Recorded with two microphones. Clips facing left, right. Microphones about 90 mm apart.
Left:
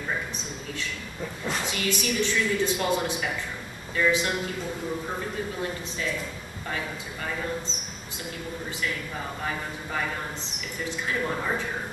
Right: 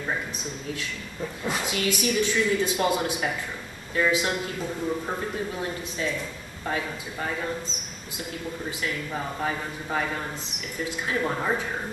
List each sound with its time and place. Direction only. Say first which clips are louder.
0.7 s a woman's voice: even; 5° right (ahead or behind)
11.2 s speech: right 3 dB; 15° right (ahead or behind)